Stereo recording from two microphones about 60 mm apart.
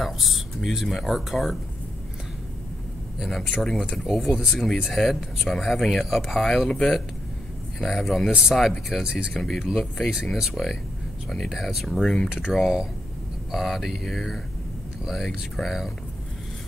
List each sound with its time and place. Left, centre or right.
0.0 s speech: centre
3.2 s speech: centre
8.3 s speech: centre
8.9 s speech: centre